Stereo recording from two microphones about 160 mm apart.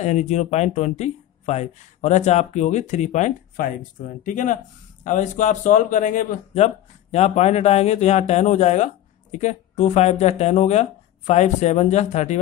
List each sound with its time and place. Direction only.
0.0 s speech: 45° left (ahead or behind)